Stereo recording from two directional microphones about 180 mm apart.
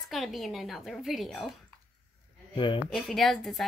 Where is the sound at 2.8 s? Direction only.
Centre (ahead or behind).